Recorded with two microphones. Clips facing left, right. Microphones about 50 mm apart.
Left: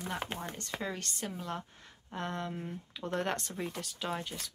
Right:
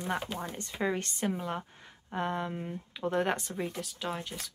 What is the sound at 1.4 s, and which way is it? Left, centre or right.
Speech, centre.